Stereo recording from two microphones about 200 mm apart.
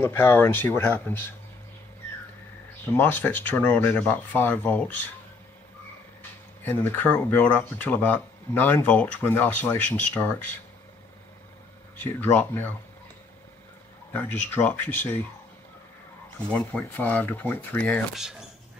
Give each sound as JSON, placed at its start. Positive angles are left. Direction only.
{"t": 0.0, "sound": "speech", "side_deg": 10}
{"t": 2.9, "sound": "speech", "side_deg": 10}
{"t": 6.6, "sound": "speech", "side_deg": 10}
{"t": 12.0, "sound": "speech", "side_deg": 10}
{"t": 14.1, "sound": "speech", "side_deg": 10}
{"t": 16.5, "sound": "speech", "side_deg": 10}